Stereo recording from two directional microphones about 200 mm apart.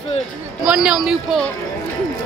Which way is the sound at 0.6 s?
5° right (ahead or behind).